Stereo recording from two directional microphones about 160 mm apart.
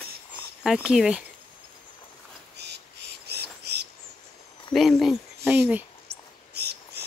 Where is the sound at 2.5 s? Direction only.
90° right.